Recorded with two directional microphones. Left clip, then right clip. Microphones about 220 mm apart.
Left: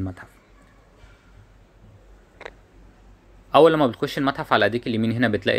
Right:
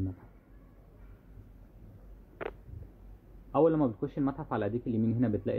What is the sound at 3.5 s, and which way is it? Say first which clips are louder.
Speech: left 11 dB; 25° left (ahead or behind).